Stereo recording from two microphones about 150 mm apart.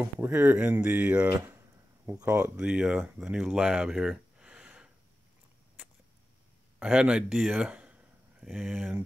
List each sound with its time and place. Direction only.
0.0 s speech: 10° right (ahead or behind)
6.8 s speech: 5° right (ahead or behind)